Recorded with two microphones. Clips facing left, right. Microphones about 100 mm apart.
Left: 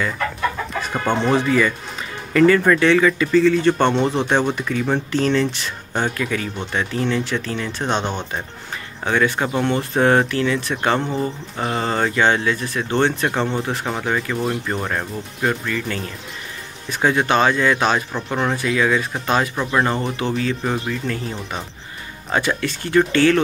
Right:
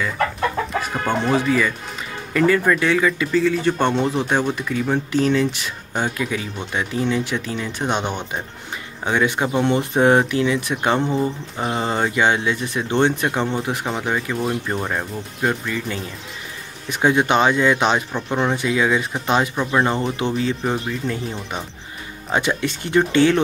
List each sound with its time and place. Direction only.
1.3 s speech: 5° right (ahead or behind)